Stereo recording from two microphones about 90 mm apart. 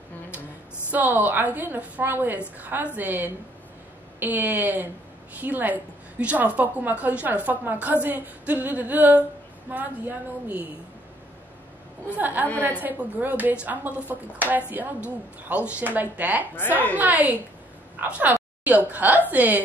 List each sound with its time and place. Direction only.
0.9 s a woman's voice: 20° right (ahead or behind)
12.2 s a woman's voice: 20° right (ahead or behind)
12.4 s a woman's voice: 20° left (ahead or behind)
12.8 s a woman's voice: 20° right (ahead or behind)